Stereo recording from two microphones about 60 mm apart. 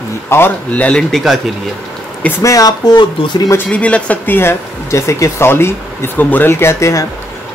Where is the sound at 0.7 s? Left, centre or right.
Left.